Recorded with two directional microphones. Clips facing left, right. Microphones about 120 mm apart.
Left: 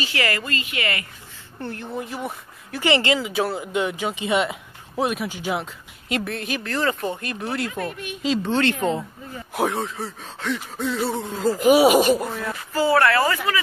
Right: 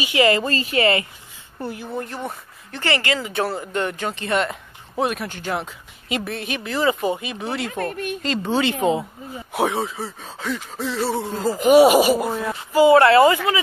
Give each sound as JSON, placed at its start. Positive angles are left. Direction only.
{"t": 0.0, "sound": "speech", "side_deg": -20}
{"t": 1.6, "sound": "speech", "side_deg": -5}
{"t": 2.9, "sound": "speech", "side_deg": 20}
{"t": 3.2, "sound": "speech", "side_deg": 5}
{"t": 7.7, "sound": "speech", "side_deg": -45}
{"t": 8.2, "sound": "speech", "side_deg": 0}
{"t": 12.7, "sound": "speech", "side_deg": -20}